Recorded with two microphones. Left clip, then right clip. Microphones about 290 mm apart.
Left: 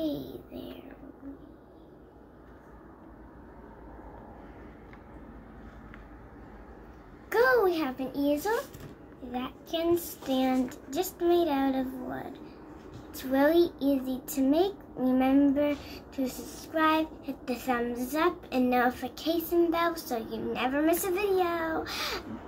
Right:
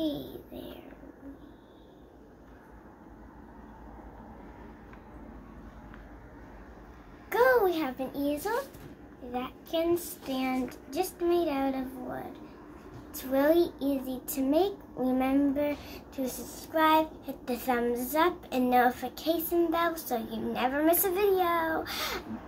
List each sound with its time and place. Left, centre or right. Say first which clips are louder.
0.0 s child singing: even; centre
7.3 s a child's voice: even; centre
9.3 s child singing: right 1 dB; centre
16.7 s a child's voice: right 2 dB; centre